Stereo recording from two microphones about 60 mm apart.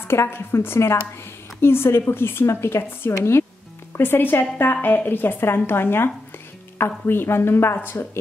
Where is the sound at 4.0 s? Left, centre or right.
Left.